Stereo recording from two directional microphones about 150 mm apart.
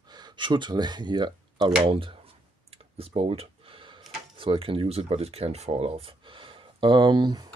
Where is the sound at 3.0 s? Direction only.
40° right (ahead or behind).